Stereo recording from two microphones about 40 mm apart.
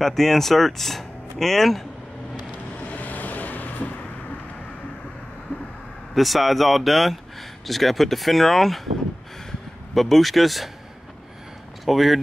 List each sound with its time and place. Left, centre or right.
0.0 s speech: centre
2.8 s vehicle: left
6.1 s speech: centre
11.8 s speech: centre